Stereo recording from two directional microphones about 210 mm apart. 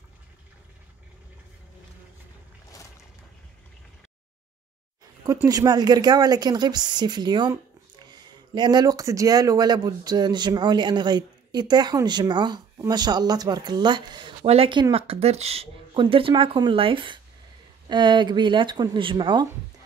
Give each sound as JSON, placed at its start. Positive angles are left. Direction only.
{"t": 5.2, "sound": "a woman's voice", "side_deg": -15}